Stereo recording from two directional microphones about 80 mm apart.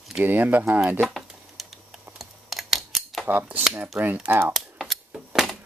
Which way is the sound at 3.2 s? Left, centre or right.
Right.